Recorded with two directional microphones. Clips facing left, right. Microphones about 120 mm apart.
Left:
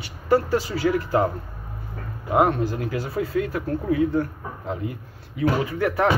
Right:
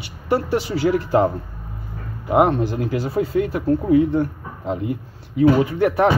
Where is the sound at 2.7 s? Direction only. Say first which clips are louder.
Right 5 dB; 30° right (ahead or behind).